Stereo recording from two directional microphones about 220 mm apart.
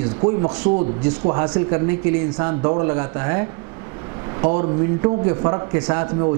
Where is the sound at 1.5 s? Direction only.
10° right (ahead or behind).